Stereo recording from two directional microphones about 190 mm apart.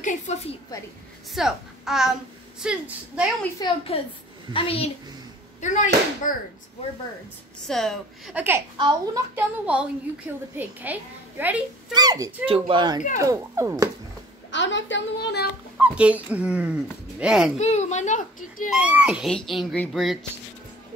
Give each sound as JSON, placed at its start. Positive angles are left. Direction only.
{"t": 0.0, "sound": "a child's voice", "side_deg": 40}
{"t": 1.3, "sound": "a child's voice", "side_deg": 0}
{"t": 3.5, "sound": "a woman's voice", "side_deg": 25}
{"t": 5.6, "sound": "speech", "side_deg": 40}
{"t": 7.6, "sound": "a child's voice", "side_deg": 0}
{"t": 8.7, "sound": "speech", "side_deg": -25}
{"t": 9.3, "sound": "speech", "side_deg": -5}
{"t": 11.9, "sound": "speech", "side_deg": -20}
{"t": 14.5, "sound": "a woman's voice", "side_deg": 70}
{"t": 15.8, "sound": "speech", "side_deg": -5}
{"t": 17.6, "sound": "a child's voice", "side_deg": 35}
{"t": 18.7, "sound": "a child's voice", "side_deg": -5}